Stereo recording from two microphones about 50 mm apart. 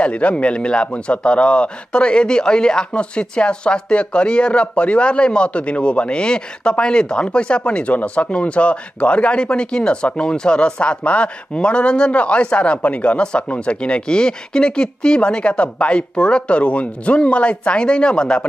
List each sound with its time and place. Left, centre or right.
0.0 s speech: left